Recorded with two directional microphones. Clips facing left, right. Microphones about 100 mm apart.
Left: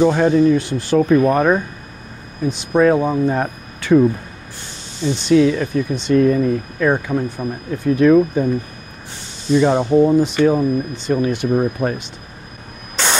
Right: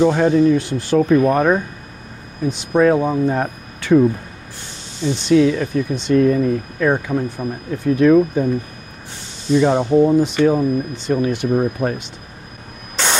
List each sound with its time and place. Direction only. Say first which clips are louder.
0.0 s speech: even; 25° left (ahead or behind)
2.7 s speech: even; 25° left (ahead or behind)
9.5 s speech: even; 25° left (ahead or behind)
12.9 s spray: even; 15° left (ahead or behind)